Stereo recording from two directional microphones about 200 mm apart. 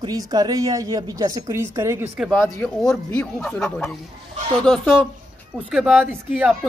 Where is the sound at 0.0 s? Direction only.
20° right (ahead or behind).